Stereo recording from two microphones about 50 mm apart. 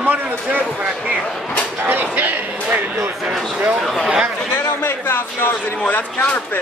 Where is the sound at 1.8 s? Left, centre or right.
Right.